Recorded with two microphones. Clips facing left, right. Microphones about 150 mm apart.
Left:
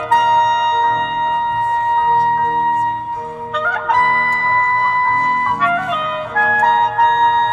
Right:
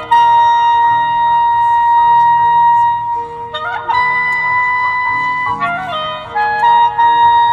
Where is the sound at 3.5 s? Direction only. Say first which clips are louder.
Even; 25° right (ahead or behind).